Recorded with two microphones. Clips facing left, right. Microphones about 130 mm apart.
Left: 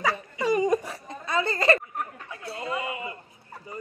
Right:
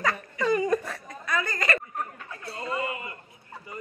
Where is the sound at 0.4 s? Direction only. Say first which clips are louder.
Left 1 dB; 15° left (ahead or behind).